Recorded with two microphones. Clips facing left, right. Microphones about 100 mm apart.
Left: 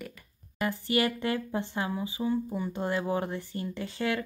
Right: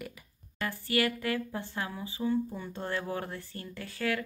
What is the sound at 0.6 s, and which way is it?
Speech, 20° left (ahead or behind).